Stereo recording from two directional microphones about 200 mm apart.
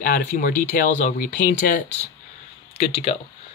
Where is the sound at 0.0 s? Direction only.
45° left (ahead or behind).